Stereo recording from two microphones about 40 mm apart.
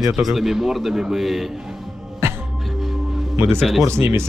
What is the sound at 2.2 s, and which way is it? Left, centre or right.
Music, right.